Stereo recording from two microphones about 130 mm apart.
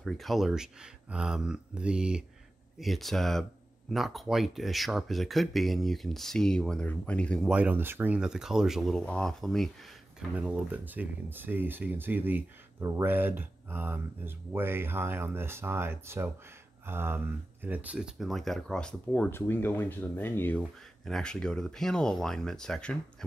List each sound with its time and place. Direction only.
0.0 s speech: centre (ahead or behind)
7.4 s speech: 10° right (ahead or behind)
10.3 s speech: 10° right (ahead or behind); by 22.9 s 5° left (ahead or behind)